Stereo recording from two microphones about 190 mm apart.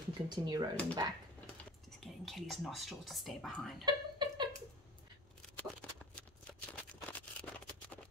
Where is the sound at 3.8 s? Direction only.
25° right (ahead or behind).